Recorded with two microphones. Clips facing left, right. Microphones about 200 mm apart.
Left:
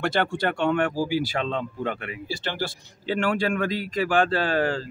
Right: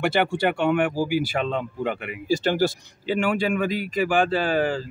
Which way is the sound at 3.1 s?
5° right (ahead or behind).